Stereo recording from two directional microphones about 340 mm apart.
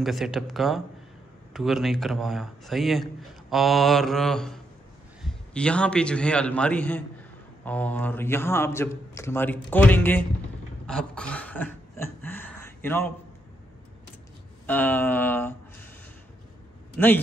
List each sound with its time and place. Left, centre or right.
0.0 s a man's voice: centre
10.9 s a sound: centre
14.7 s a man's voice: centre